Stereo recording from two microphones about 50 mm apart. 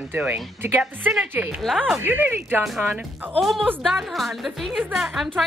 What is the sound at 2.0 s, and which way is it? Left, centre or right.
Speech, right.